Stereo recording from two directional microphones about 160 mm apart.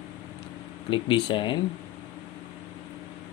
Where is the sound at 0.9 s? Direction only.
30° left (ahead or behind).